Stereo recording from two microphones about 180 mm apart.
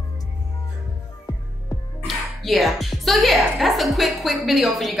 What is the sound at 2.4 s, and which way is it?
A woman's voice, centre (ahead or behind).